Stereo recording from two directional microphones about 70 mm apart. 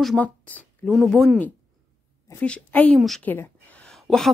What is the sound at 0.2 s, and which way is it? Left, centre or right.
Speech, left.